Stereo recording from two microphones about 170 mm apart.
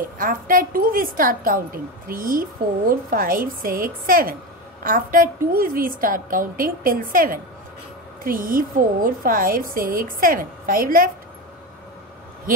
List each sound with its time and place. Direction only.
0.2 s a woman's voice: 55° right (ahead or behind)